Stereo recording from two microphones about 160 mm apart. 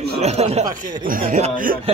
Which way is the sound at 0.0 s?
40° right (ahead or behind).